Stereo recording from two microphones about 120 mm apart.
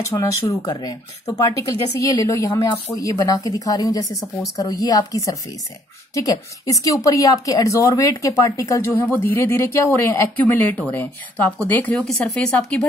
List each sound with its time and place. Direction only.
0.0 s speech: 25° left (ahead or behind); by 12.8 s 10° left (ahead or behind)